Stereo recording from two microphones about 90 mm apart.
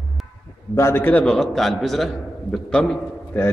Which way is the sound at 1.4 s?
Centre (ahead or behind).